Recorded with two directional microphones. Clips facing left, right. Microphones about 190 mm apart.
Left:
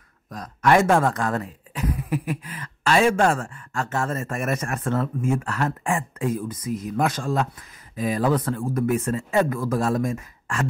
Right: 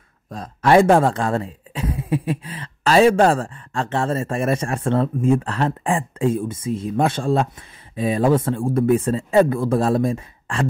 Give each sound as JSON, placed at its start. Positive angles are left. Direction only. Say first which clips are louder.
{"t": 0.3, "sound": "speech", "louder": "right 3 dB", "side_deg": -30}